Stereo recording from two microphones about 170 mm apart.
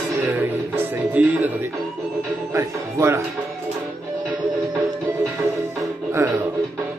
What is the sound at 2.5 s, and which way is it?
Speech, 15° right (ahead or behind).